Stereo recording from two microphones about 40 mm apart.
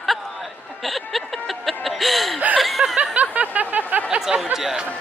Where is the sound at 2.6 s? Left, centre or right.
Centre.